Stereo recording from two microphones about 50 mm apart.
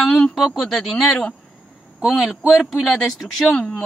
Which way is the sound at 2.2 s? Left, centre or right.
Centre.